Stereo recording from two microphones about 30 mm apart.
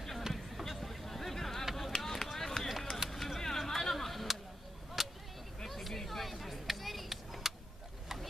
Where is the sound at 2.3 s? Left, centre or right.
Centre.